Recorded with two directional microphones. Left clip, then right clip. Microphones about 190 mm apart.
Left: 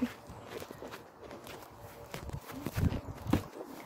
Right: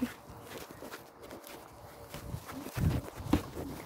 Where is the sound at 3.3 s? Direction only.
35° right (ahead or behind).